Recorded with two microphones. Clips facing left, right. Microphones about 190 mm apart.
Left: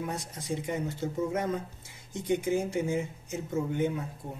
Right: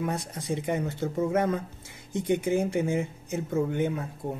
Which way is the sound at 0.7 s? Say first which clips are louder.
Right 5 dB; 65° right (ahead or behind).